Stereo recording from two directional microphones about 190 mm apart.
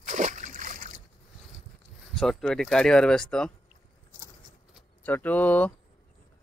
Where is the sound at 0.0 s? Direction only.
40° right (ahead or behind).